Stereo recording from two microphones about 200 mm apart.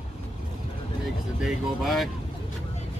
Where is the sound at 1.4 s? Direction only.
Centre (ahead or behind).